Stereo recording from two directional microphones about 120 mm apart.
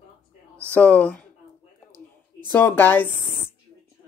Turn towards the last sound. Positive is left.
turn(degrees=15)  # may be behind; listen again after turning